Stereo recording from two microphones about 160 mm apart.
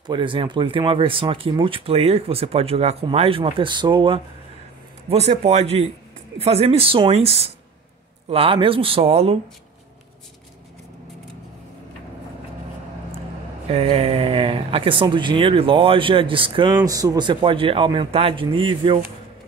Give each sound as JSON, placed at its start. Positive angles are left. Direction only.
{"t": 0.0, "sound": "speech", "side_deg": -30}
{"t": 5.1, "sound": "speech", "side_deg": -40}
{"t": 13.7, "sound": "speech", "side_deg": -40}